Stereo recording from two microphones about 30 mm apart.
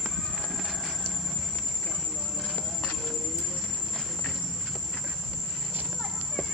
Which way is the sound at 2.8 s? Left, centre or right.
Left.